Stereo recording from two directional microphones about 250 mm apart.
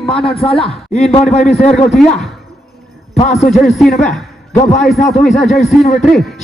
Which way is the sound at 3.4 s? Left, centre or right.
Centre.